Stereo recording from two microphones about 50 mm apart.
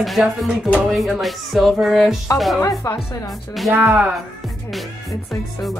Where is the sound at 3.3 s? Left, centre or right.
Centre.